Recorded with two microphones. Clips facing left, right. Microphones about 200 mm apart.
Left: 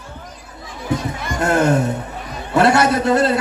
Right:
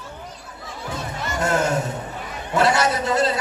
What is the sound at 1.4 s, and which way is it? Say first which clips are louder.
A man's voice: left 6 dB; 60° left (ahead or behind).